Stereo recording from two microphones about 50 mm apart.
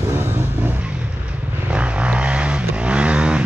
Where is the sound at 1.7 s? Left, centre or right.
Right.